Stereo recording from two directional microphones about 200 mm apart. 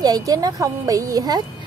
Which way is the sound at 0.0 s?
20° right (ahead or behind).